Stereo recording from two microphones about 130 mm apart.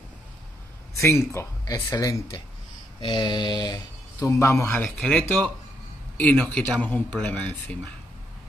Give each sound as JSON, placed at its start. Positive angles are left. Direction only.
{"t": 0.9, "sound": "speech", "side_deg": 20}
{"t": 3.0, "sound": "mantra", "side_deg": 35}
{"t": 4.3, "sound": "speech", "side_deg": 20}